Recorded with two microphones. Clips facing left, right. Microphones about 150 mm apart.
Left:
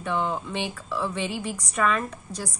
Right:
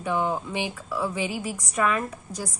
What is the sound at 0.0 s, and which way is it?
A woman's voice, 10° right (ahead or behind).